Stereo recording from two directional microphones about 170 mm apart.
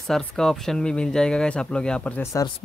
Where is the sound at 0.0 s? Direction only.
Centre (ahead or behind).